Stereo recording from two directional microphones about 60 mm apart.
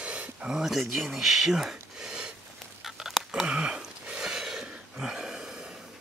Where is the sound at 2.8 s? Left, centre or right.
Centre.